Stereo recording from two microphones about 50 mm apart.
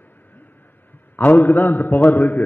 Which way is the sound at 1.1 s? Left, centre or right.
Left.